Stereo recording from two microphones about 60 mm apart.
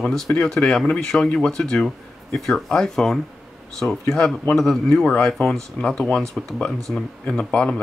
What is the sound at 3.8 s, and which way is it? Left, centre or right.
Speech, left.